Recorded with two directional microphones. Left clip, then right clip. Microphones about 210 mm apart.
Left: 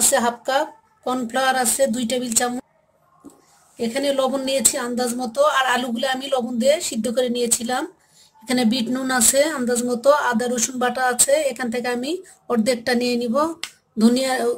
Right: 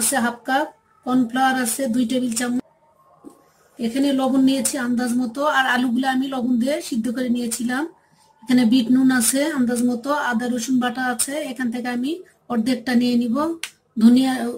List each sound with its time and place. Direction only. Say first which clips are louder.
0.1 s speech: right 2 dB; 55° left (ahead or behind)
3.7 s speech: left 1 dB; 55° left (ahead or behind)